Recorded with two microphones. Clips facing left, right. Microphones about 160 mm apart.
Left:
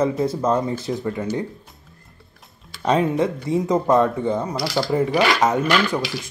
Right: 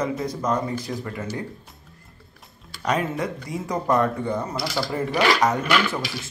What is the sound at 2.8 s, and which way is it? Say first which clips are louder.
Speech: left 6 dB; 25° left (ahead or behind).